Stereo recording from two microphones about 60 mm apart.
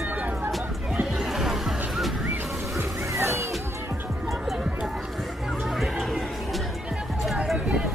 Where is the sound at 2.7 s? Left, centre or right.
Right.